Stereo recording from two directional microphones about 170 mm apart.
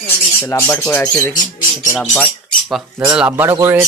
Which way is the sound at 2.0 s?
5° left (ahead or behind).